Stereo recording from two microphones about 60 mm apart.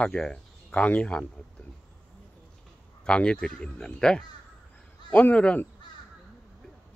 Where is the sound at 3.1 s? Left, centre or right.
Centre.